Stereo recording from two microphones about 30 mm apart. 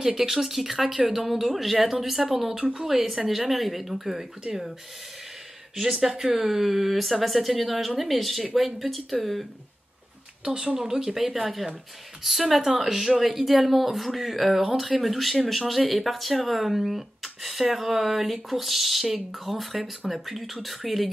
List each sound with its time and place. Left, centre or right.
0.0 s speech: centre
5.8 s speech: centre
10.4 s speech: right
12.2 s speech: centre